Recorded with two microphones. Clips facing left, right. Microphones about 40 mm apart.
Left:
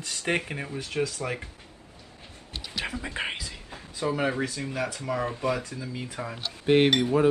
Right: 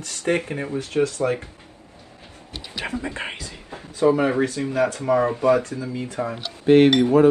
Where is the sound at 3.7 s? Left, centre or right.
Right.